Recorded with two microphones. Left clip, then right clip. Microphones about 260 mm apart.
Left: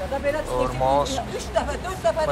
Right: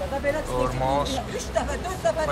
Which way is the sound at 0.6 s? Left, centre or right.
Centre.